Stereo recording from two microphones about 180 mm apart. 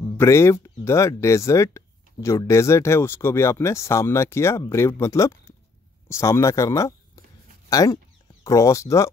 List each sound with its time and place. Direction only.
0.2 s speech: 15° left (ahead or behind)